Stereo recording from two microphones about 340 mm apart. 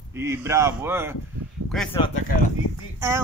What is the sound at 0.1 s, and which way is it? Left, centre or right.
Speech, centre.